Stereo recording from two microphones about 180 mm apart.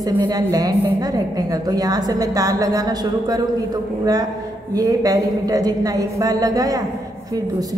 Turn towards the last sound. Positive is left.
turn(degrees=-20)  # may be behind; listen again after turning